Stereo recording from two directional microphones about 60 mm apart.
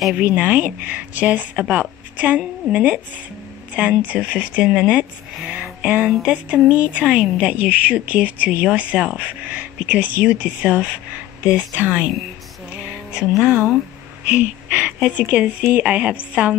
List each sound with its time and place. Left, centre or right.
0.1 s a woman's voice: right
13.1 s speech: centre
14.2 s speech: right